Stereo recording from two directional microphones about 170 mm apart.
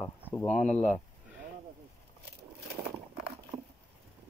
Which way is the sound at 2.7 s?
70° right (ahead or behind).